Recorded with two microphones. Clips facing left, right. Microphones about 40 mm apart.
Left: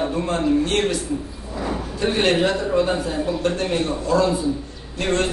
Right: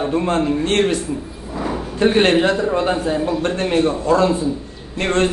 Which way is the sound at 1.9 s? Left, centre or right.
Right.